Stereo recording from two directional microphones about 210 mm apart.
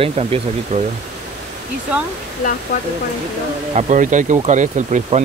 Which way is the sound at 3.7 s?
35° right (ahead or behind).